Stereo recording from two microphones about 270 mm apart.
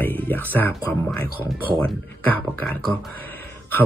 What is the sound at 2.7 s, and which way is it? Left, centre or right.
Speech, centre.